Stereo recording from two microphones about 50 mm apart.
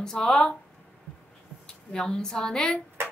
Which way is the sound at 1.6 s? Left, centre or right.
Centre.